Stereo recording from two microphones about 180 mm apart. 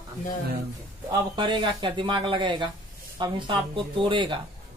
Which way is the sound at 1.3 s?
25° right (ahead or behind).